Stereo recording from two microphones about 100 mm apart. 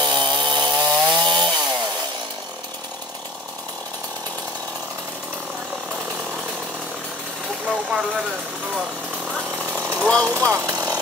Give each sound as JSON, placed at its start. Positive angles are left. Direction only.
{"t": 0.0, "sound": "chainsaw", "side_deg": -50}
{"t": 7.6, "sound": "speech", "side_deg": -10}
{"t": 9.6, "sound": "chainsaw", "side_deg": -20}
{"t": 10.0, "sound": "speech", "side_deg": 5}
{"t": 10.3, "sound": "speech", "side_deg": -25}